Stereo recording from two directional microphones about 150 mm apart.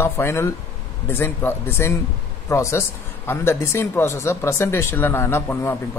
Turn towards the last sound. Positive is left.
turn(degrees=15)  # may be behind; listen again after turning